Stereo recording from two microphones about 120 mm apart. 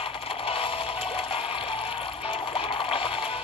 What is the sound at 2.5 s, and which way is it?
Music, 50° left (ahead or behind).